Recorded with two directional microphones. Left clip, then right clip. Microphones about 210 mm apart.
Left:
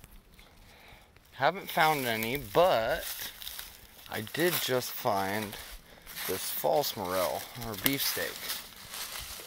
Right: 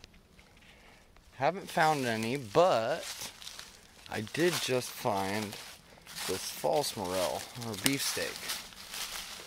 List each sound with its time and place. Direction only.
1.4 s speech: 25° right (ahead or behind)
3.3 s crushing: 55° left (ahead or behind)
4.1 s speech: 25° right (ahead or behind)
4.6 s speech: 15° right (ahead or behind)
6.0 s zipper: 30° left (ahead or behind)
6.6 s speech: 15° right (ahead or behind)
7.7 s speech: 35° left (ahead or behind)
8.3 s a sound: 50° left (ahead or behind)